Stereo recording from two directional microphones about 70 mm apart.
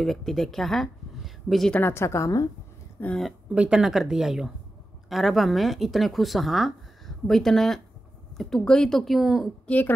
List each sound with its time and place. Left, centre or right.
0.0 s speech: centre
1.8 s a woman's voice: left
3.0 s speech: left
3.5 s speech: centre
3.8 s speech: centre
9.7 s a woman's voice: left